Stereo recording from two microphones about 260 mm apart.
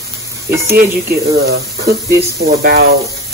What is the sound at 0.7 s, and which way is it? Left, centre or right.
Speech, right.